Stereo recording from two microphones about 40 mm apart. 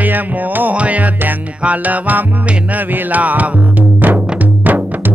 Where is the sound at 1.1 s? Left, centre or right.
Right.